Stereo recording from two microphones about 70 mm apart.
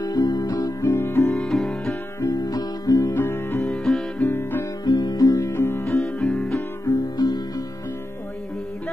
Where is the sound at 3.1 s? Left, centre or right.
Left.